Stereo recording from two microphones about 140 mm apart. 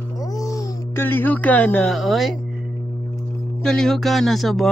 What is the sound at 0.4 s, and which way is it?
Speech, 20° left (ahead or behind).